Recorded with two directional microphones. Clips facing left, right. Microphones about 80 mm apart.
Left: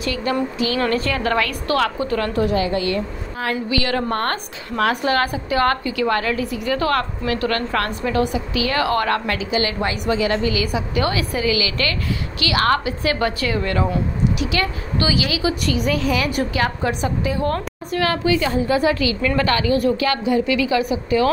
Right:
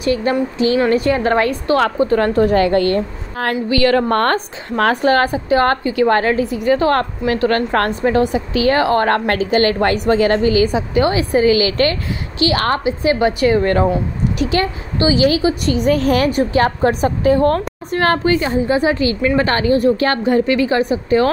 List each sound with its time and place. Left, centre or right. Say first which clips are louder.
0.0 s a woman's voice: right 5 dB; right
0.7 s a woman's voice: right 6 dB; centre; by 2.5 s right
2.5 s a woman's voice: right 6 dB; right
13.6 s a woman's voice: right 6 dB; right
16.3 s a woman's voice: right 6 dB; right
16.6 s a woman's voice: right 6 dB; right
18.4 s a woman's voice: right 2 dB; right